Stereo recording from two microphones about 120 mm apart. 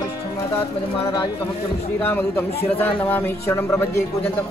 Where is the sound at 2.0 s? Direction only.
20° left (ahead or behind).